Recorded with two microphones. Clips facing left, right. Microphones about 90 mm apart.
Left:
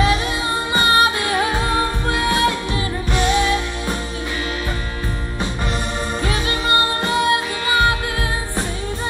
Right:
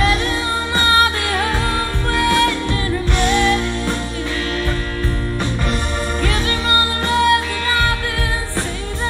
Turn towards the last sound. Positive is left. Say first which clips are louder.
# left 1 dB
turn(degrees=20)  # may be behind; listen again after turning